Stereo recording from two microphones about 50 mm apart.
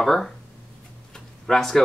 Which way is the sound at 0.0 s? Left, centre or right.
Centre.